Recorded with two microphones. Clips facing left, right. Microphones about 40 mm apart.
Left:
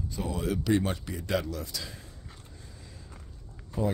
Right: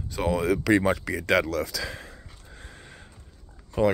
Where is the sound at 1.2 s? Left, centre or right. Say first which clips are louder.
Right 8 dB; right.